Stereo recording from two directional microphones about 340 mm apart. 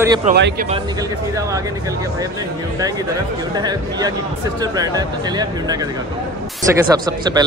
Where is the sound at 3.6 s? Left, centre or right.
Centre.